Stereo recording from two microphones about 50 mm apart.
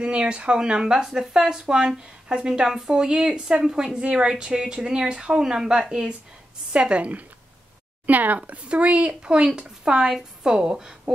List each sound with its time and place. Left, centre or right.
0.0 s speech: right